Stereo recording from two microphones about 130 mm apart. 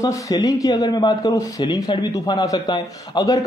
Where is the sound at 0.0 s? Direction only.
30° left (ahead or behind).